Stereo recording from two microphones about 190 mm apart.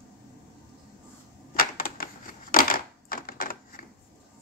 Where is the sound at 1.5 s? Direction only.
50° left (ahead or behind).